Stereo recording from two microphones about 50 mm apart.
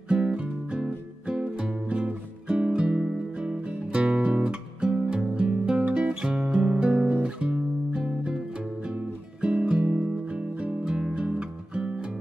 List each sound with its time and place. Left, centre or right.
0.1 s music: right
7.1 s guitar: right
8.0 s music: centre
9.4 s music: right